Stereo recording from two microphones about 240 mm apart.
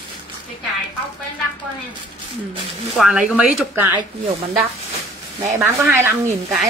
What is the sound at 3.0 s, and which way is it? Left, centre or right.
Speech, centre.